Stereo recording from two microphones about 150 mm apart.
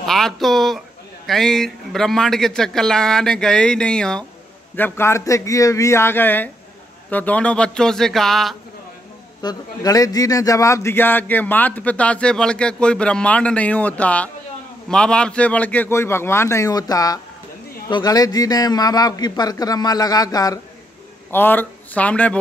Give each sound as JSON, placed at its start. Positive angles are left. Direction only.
{"t": 0.0, "sound": "a man's voice", "side_deg": 0}
{"t": 9.4, "sound": "a man's voice", "side_deg": 25}
{"t": 21.3, "sound": "a man's voice", "side_deg": 15}